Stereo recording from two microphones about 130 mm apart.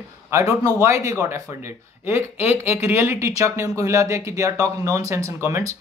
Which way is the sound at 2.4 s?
15° right (ahead or behind).